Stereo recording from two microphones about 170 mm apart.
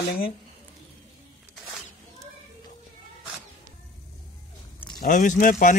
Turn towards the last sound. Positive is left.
turn(degrees=50)  # may be behind; listen again after turning